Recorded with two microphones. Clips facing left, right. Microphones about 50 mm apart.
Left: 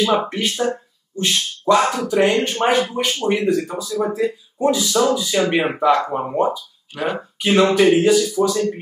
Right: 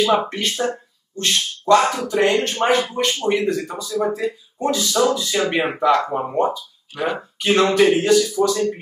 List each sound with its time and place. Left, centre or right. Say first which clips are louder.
0.0 s speech: even; centre